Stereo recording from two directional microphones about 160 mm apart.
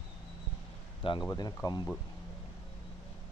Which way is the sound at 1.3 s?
25° left (ahead or behind).